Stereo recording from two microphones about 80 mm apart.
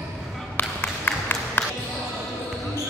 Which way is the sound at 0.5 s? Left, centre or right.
Left.